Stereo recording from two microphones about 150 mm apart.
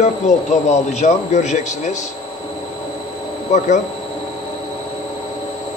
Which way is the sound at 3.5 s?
50° left (ahead or behind).